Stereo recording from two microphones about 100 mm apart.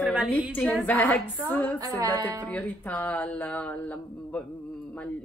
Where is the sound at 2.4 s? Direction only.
15° left (ahead or behind).